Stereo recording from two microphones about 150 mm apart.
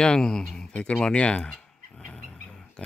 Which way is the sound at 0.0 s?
5° left (ahead or behind).